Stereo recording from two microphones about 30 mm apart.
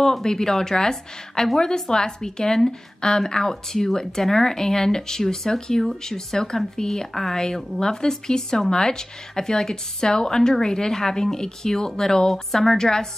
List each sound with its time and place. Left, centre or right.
0.2 s speech: centre
12.3 s a woman's voice: centre